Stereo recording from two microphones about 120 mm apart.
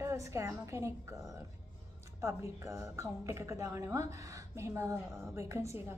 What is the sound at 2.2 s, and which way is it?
A woman's voice, 25° right (ahead or behind).